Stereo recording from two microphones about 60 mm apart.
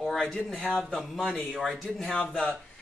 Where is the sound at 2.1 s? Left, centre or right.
Centre.